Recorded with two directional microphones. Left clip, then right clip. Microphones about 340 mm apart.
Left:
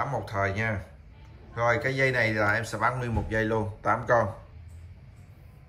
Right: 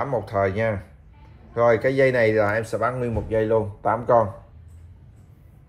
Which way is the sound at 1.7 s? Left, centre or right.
Left.